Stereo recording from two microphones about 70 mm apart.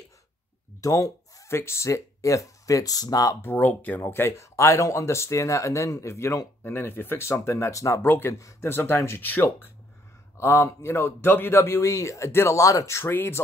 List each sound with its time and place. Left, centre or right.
0.7 s a sound: left
1.6 s speech: left
3.4 s speech: left
8.0 s speech: left
8.3 s speech: left
8.6 s speech: left